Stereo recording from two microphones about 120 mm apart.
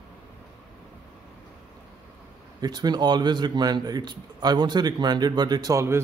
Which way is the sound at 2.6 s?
35° right (ahead or behind).